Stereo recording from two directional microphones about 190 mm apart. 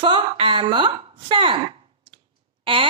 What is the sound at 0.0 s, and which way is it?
A woman's voice, 25° right (ahead or behind).